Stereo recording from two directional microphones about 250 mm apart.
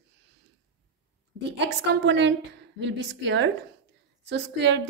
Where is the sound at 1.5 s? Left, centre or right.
Right.